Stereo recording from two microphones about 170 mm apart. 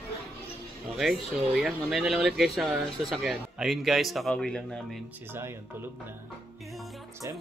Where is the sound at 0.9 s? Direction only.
Centre (ahead or behind).